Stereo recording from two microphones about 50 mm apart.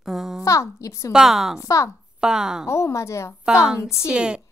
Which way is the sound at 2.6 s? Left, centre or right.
Left.